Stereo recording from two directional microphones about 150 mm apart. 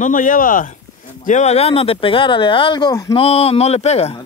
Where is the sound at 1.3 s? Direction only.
50° left (ahead or behind); by 3.1 s 25° left (ahead or behind).